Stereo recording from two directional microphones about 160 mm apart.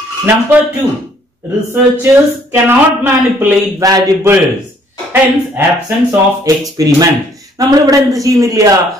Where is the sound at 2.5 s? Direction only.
15° right (ahead or behind).